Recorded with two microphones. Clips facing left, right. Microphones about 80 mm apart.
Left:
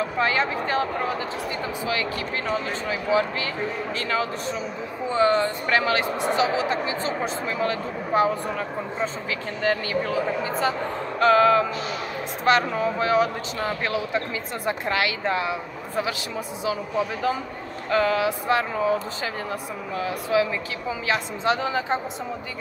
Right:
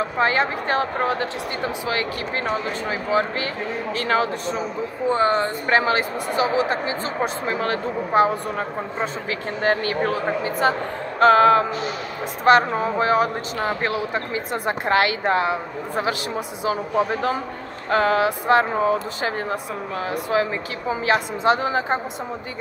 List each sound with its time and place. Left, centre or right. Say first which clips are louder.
0.0 s a man's voice: right 3 dB; right